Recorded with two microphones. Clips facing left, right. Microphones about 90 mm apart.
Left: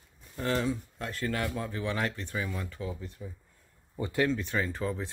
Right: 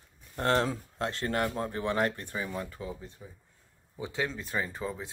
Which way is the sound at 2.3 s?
20° right (ahead or behind).